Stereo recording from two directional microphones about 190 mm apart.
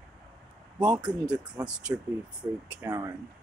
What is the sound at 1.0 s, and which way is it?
Speech, 5° right (ahead or behind).